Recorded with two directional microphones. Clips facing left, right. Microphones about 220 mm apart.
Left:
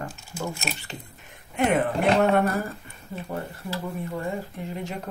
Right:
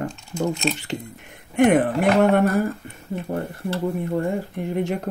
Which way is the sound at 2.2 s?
50° right (ahead or behind).